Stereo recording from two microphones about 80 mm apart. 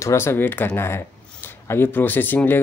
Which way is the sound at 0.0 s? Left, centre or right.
Left.